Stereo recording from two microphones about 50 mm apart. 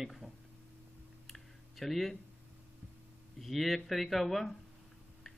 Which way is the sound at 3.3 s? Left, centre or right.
Centre.